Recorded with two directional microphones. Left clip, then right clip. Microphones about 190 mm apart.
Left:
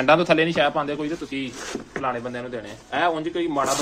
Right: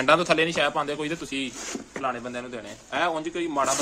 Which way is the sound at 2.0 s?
10° right (ahead or behind).